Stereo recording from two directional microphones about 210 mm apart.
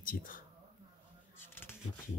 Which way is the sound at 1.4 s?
10° left (ahead or behind).